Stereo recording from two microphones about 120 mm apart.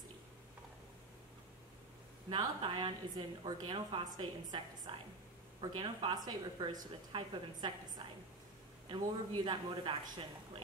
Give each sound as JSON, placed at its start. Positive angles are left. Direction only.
{"t": 2.2, "sound": "a woman's voice", "side_deg": -40}
{"t": 4.9, "sound": "a woman's voice", "side_deg": -50}